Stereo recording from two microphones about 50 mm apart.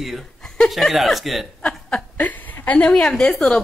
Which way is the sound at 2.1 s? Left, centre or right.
Left.